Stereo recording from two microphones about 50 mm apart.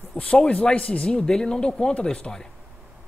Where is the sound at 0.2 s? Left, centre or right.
Centre.